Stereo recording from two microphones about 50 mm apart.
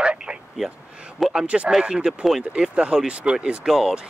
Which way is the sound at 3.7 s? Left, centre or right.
Centre.